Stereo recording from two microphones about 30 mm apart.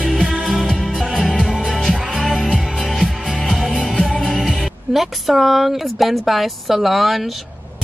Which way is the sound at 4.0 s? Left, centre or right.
Centre.